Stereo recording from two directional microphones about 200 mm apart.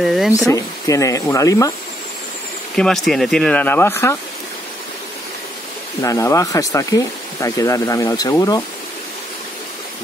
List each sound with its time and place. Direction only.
0.0 s speech: centre (ahead or behind)
0.5 s speech: 15° left (ahead or behind)
2.7 s speech: centre (ahead or behind)
6.0 s speech: 15° left (ahead or behind)